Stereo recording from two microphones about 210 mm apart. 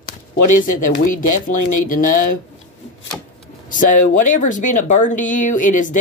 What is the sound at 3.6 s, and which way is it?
Speech, 40° left (ahead or behind).